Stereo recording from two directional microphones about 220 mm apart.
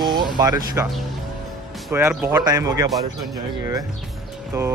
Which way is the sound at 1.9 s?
5° right (ahead or behind).